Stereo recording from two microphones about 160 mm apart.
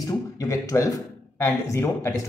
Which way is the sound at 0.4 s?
20° left (ahead or behind).